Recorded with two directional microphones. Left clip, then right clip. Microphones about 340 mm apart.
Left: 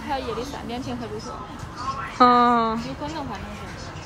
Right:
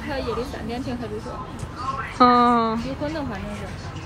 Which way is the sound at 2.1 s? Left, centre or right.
Centre.